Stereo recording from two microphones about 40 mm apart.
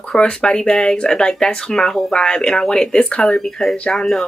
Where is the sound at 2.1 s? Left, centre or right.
Centre.